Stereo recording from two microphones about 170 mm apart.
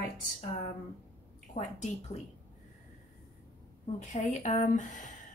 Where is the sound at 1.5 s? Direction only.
45° left (ahead or behind).